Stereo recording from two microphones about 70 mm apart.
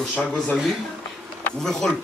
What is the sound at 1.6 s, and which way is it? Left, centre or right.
Speech, centre.